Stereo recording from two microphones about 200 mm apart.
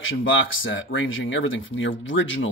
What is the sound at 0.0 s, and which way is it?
Speech, 80° left.